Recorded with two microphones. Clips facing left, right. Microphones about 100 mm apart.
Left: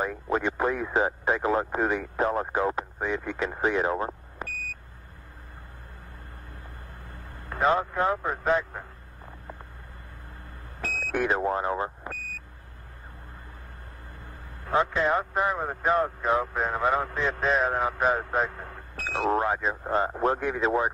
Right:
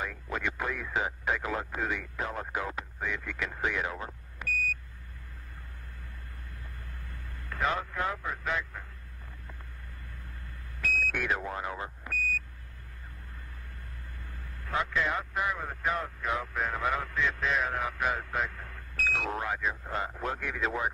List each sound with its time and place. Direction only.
0.0 s a man's voice: 30° left (ahead or behind)
7.1 s a man's voice: 30° left (ahead or behind)
10.8 s speech: 35° left (ahead or behind)
14.6 s a man's voice: 30° left (ahead or behind)